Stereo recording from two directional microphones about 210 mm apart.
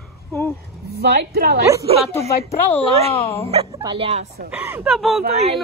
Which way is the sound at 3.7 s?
20° right (ahead or behind).